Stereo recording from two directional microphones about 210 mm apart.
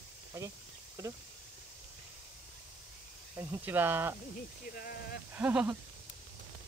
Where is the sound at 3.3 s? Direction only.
10° right (ahead or behind).